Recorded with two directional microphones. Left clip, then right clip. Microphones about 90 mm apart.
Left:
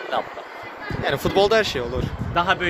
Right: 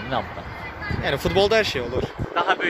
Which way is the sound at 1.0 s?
30° left (ahead or behind).